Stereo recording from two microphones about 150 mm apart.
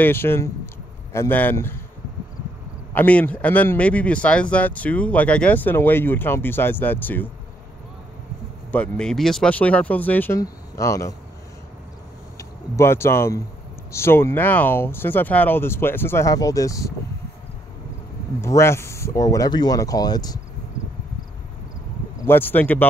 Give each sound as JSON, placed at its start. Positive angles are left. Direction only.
{"t": 0.0, "sound": "speech", "side_deg": 15}
{"t": 2.9, "sound": "speech", "side_deg": 10}
{"t": 8.9, "sound": "speech", "side_deg": 5}
{"t": 12.4, "sound": "speech", "side_deg": 20}
{"t": 18.4, "sound": "speech", "side_deg": 20}
{"t": 22.2, "sound": "speech", "side_deg": 15}